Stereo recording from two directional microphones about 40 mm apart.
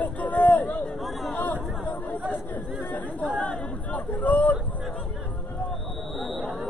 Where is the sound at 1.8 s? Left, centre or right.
Left.